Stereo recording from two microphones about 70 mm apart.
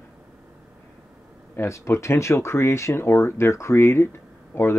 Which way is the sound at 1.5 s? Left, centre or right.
Left.